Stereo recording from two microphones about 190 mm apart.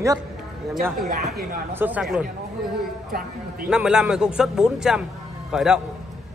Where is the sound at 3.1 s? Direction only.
50° right (ahead or behind).